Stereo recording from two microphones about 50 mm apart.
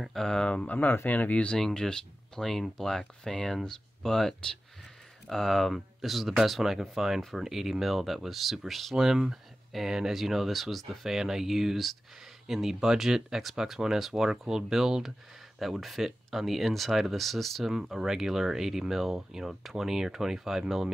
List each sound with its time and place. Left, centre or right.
0.1 s speech: centre
0.7 s speech: left
1.6 s speech: centre
17.7 s speech: centre